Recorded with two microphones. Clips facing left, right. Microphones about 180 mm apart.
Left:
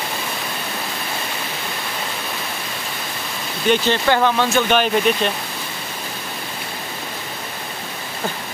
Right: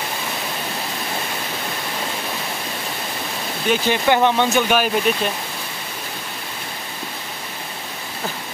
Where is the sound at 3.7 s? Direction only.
15° right (ahead or behind).